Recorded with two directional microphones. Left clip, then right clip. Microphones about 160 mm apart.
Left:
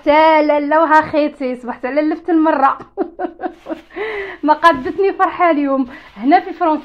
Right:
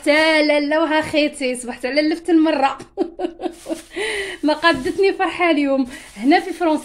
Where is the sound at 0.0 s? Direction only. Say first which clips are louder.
Left 4 dB; 15° right (ahead or behind).